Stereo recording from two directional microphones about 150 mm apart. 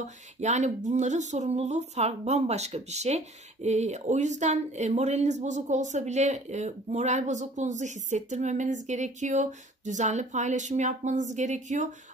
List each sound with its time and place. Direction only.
0.0 s speech: 50° right (ahead or behind)